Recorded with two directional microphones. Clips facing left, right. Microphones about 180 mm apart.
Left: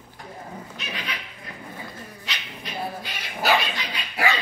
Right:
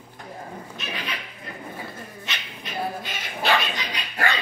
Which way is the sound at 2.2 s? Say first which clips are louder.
Even; 20° right (ahead or behind).